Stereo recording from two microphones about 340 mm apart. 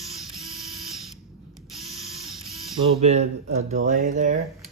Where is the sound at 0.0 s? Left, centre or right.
Centre.